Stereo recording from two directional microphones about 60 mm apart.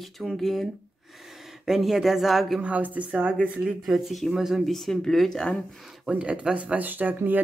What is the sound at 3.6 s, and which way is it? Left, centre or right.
Speech, centre.